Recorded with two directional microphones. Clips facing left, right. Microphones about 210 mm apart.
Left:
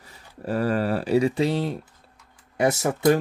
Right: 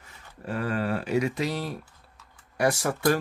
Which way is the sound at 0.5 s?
40° left (ahead or behind).